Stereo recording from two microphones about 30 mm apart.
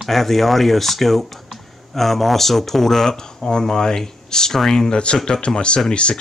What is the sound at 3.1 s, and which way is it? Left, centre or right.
Speech, left.